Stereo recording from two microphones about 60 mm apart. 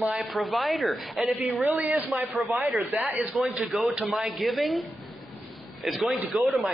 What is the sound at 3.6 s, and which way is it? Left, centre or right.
A man's voice, centre.